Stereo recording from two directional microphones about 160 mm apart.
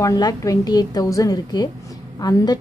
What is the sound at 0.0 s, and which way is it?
A woman's voice, 20° left (ahead or behind).